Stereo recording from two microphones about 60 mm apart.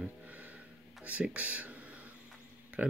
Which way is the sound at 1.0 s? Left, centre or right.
Right.